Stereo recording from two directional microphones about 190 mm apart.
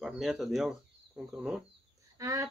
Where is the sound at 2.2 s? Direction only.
15° right (ahead or behind).